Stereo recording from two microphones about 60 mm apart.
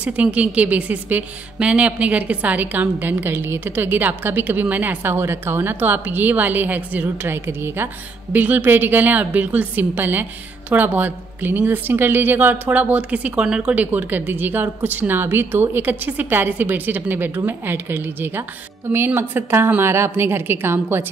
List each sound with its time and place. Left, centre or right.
0.0 s a woman's voice: right
13.7 s a woman's voice: right